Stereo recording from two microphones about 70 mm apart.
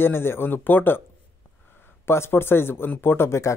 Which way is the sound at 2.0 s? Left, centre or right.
Left.